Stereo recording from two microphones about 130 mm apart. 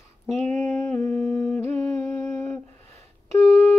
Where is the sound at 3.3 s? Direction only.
25° left (ahead or behind).